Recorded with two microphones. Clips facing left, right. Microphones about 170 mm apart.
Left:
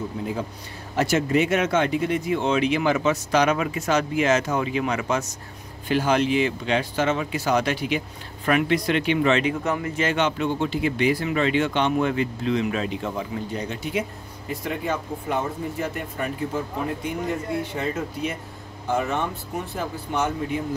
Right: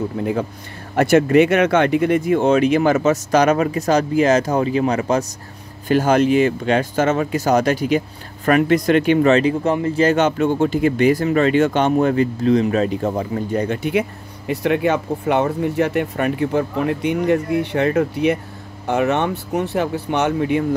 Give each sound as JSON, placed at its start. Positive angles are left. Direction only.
{"t": 0.2, "sound": "speech", "side_deg": -65}
{"t": 14.5, "sound": "speech", "side_deg": -75}